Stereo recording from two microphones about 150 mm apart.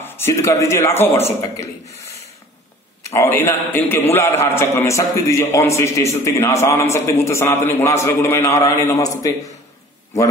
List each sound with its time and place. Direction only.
0.0 s a man's voice: 20° left (ahead or behind)
3.1 s a man's voice: 15° left (ahead or behind)